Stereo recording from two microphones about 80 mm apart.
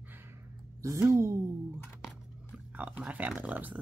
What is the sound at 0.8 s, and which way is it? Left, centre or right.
Speech, right.